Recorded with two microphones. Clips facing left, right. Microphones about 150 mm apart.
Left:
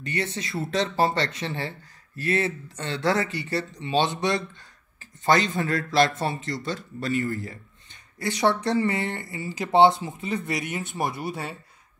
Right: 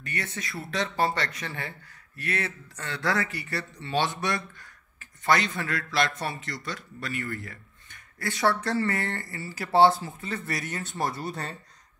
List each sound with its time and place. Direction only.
0.0 s speech: 25° left (ahead or behind)
11.2 s speech: 5° left (ahead or behind)